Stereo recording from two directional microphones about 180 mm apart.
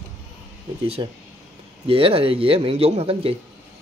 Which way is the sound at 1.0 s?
25° right (ahead or behind).